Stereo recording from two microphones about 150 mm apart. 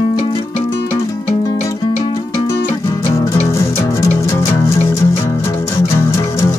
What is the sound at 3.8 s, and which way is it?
Music, 20° left (ahead or behind).